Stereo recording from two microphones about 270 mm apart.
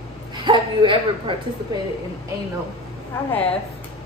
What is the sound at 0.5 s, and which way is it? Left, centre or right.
Speech, centre.